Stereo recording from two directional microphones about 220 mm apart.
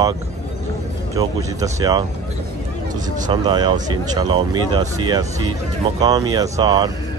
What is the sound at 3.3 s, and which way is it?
Speech, 20° right (ahead or behind).